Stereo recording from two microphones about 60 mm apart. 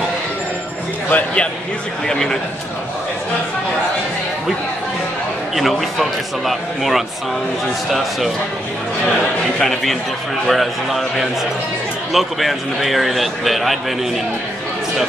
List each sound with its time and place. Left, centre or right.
1.1 s speech: centre
2.0 s a man's voice: centre
5.6 s a man's voice: centre
9.6 s a man's voice: centre